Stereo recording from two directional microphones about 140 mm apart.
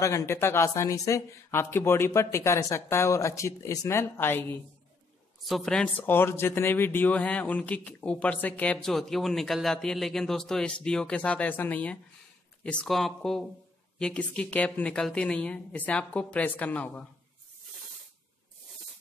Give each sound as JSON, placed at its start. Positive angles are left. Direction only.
{"t": 0.0, "sound": "speech", "side_deg": 20}
{"t": 5.4, "sound": "speech", "side_deg": 5}